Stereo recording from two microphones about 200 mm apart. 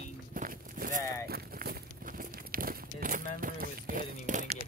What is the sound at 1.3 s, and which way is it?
Crumpling, 50° right (ahead or behind).